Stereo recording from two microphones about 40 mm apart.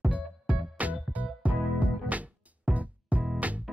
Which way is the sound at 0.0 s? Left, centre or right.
Right.